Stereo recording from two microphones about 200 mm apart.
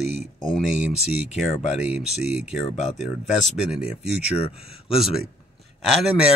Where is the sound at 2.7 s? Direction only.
35° left (ahead or behind).